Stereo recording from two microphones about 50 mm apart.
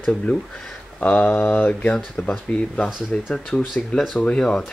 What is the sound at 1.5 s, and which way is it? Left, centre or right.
Speech, left.